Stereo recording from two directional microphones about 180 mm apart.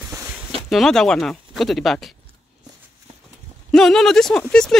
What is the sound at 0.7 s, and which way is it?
Speech, centre (ahead or behind).